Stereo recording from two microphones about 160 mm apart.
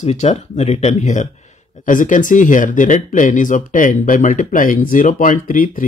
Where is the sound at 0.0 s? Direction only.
45° left (ahead or behind).